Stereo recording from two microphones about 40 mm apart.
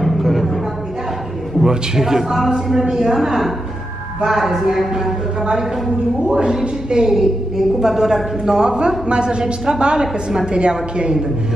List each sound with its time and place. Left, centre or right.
0.0 s a sound: centre
1.6 s a woman's voice: centre
6.3 s a woman's voice: centre
7.1 s a woman's voice: centre